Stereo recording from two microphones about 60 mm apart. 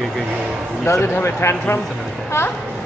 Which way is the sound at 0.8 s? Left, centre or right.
Left.